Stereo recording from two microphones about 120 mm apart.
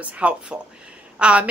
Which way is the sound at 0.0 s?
10° right (ahead or behind).